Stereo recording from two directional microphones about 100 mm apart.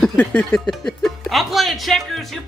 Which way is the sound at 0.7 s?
5° left (ahead or behind).